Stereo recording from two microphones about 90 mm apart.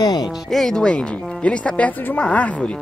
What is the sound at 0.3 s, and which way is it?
Speech, 5° left (ahead or behind).